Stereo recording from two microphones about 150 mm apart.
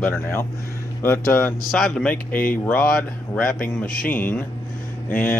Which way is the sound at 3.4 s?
70° left (ahead or behind).